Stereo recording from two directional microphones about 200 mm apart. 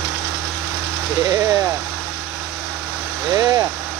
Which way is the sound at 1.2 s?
20° right (ahead or behind).